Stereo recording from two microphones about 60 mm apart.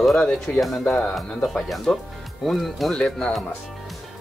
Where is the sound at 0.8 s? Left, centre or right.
Centre.